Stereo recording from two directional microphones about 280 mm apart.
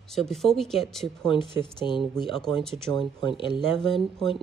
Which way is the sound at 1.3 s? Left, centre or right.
Centre.